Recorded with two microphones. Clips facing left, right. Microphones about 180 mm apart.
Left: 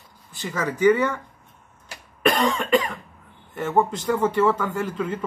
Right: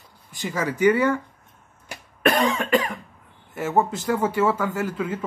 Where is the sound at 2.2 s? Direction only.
10° right (ahead or behind).